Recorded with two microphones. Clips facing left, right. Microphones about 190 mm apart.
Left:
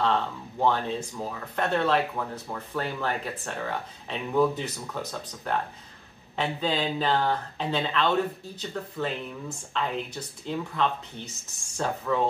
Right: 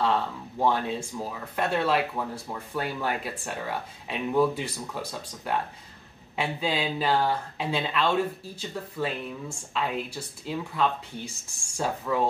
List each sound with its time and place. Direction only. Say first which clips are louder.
0.6 s speech: even; 10° right (ahead or behind)